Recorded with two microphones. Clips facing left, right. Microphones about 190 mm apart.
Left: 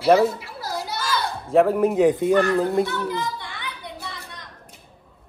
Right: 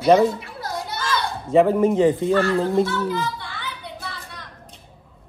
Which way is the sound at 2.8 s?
15° left (ahead or behind).